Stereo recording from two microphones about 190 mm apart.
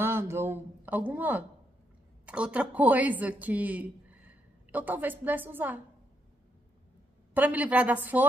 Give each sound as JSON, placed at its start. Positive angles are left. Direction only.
{"t": 0.0, "sound": "a woman's voice", "side_deg": -15}
{"t": 7.3, "sound": "a woman's voice", "side_deg": -10}